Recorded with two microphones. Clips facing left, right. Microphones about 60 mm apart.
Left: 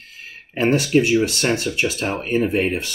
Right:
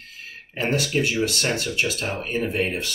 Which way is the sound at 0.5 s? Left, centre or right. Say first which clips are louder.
Left 6 dB; left.